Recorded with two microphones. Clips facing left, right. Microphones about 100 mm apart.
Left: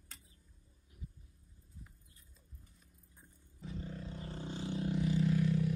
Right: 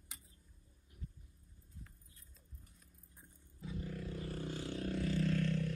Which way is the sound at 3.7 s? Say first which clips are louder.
Right 1 dB; 25° left (ahead or behind).